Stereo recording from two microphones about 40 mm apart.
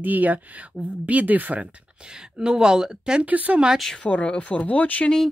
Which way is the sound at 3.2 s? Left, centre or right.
Right.